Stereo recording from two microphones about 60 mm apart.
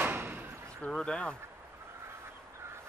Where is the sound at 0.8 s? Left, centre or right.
Centre.